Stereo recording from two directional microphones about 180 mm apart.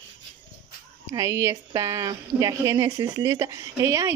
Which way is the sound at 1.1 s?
20° right (ahead or behind).